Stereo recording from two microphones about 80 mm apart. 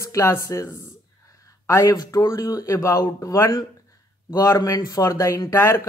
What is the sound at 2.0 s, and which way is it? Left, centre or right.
Speech, left.